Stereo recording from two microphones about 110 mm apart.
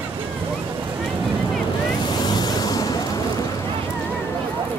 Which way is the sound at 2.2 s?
40° left (ahead or behind).